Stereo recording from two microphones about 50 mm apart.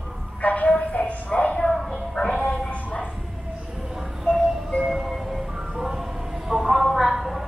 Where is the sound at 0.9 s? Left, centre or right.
Left.